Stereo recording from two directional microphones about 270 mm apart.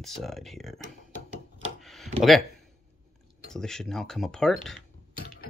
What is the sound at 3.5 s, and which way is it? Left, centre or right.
Speech, centre.